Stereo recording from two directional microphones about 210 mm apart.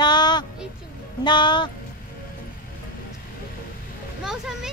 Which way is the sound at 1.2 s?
20° left (ahead or behind).